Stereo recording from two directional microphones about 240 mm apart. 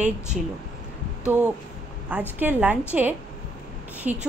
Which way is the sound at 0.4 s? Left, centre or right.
Centre.